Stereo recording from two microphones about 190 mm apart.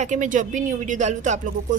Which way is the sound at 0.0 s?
40° right (ahead or behind).